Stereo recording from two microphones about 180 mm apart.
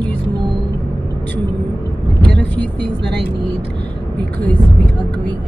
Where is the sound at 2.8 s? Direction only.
70° right (ahead or behind).